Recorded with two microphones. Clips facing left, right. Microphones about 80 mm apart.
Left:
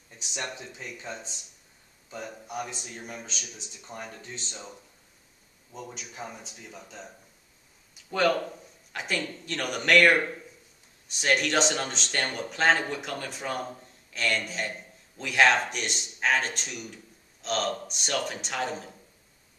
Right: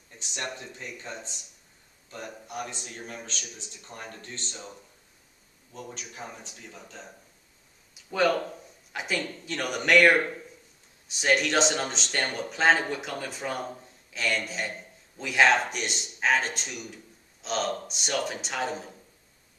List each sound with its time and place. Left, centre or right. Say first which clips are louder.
0.2 s a man's voice: even; centre
8.1 s speech: even; centre